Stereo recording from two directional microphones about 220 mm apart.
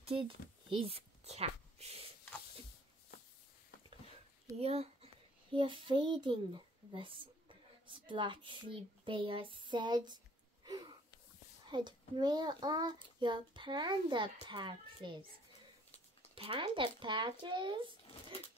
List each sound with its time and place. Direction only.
0.0 s speech: 25° right (ahead or behind)
4.6 s a child's voice: 25° right (ahead or behind)
16.3 s a child's voice: 25° right (ahead or behind)